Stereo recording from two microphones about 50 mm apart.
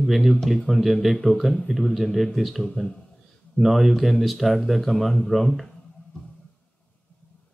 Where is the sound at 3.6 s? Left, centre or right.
Centre.